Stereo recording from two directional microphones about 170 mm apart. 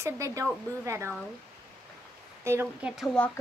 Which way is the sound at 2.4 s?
15° right (ahead or behind).